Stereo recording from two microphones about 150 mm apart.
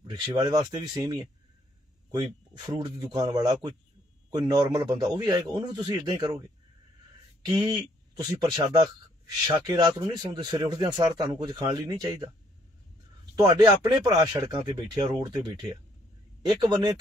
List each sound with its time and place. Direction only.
0.0 s speech: 30° right (ahead or behind)
2.6 s speech: 30° right (ahead or behind)
8.2 s speech: 30° right (ahead or behind)